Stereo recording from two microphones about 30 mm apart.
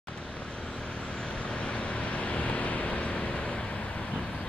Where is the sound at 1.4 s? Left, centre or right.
Left.